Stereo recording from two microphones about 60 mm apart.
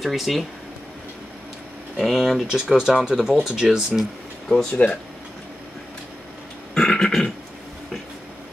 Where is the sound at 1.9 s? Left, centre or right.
Centre.